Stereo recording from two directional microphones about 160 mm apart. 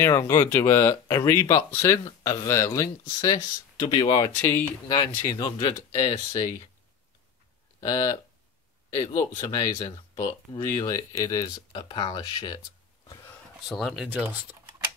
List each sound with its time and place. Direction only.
0.0 s speech: 15° left (ahead or behind)
4.4 s speech: 15° left (ahead or behind); by 6.5 s 30° left (ahead or behind)
7.8 s speech: 25° left (ahead or behind)
13.7 s speech: centre (ahead or behind)